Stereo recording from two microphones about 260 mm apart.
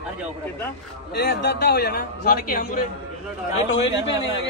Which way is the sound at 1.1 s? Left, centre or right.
Left.